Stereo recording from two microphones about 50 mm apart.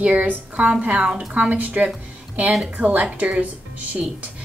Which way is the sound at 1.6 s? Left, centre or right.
Right.